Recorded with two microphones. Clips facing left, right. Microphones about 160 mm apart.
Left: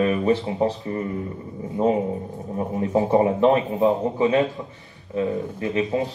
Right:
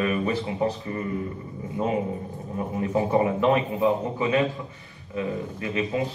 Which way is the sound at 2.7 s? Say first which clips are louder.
Left 3 dB; 20° left (ahead or behind).